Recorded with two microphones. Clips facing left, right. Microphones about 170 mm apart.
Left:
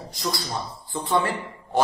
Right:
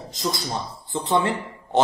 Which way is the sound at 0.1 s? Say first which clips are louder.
Right 2 dB; 20° right (ahead or behind).